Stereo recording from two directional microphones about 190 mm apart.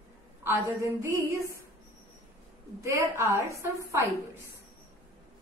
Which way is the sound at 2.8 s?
15° right (ahead or behind).